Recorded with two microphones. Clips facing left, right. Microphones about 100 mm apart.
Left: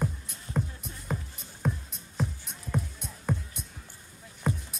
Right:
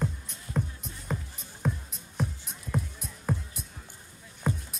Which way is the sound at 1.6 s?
Centre (ahead or behind).